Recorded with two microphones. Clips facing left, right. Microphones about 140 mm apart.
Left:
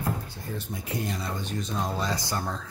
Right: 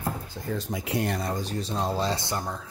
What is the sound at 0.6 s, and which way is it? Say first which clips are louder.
Speech: right 4 dB; 90° right.